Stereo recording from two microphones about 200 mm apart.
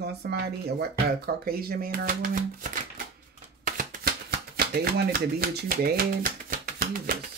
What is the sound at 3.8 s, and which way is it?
Shuffling cards, 45° right (ahead or behind).